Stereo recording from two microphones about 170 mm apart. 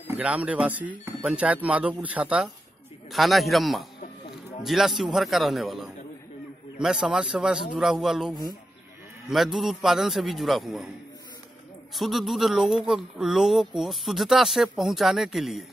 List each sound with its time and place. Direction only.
0.2 s speech: 10° right (ahead or behind)
11.9 s speech: centre (ahead or behind)